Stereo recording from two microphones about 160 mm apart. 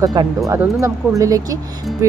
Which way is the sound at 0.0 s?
25° right (ahead or behind).